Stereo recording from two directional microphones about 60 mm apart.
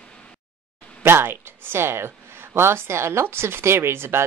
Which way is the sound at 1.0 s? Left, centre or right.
Right.